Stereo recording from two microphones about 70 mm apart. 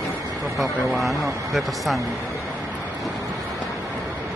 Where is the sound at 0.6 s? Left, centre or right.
Centre.